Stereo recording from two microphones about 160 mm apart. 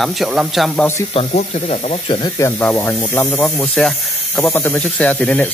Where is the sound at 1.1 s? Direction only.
40° left (ahead or behind).